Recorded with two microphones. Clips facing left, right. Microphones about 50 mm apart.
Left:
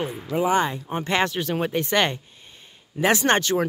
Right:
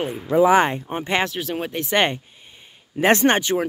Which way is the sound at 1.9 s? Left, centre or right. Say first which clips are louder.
Right 4 dB; right.